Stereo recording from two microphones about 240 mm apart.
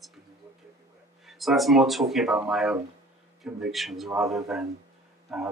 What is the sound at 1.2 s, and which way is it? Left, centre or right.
Speech, centre.